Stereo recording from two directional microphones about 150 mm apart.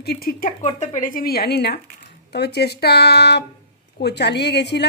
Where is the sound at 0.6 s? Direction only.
50° left (ahead or behind); by 4.4 s 90° left.